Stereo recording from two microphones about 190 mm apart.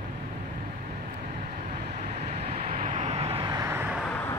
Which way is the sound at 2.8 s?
40° right (ahead or behind).